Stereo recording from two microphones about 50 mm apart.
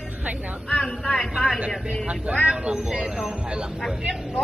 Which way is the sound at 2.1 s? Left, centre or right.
Centre.